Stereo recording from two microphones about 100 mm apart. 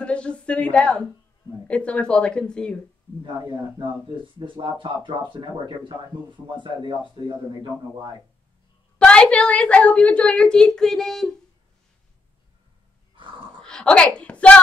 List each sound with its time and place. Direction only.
0.0 s a sound: 10° left (ahead or behind)
1.7 s a woman's voice: 10° left (ahead or behind)
4.4 s speech: 55° right (ahead or behind)
8.9 s a woman's voice: 10° left (ahead or behind)
13.6 s speech: 10° left (ahead or behind)